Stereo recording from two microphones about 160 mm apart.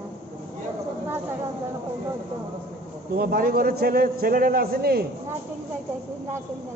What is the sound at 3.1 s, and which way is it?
A man's voice, 70° right (ahead or behind).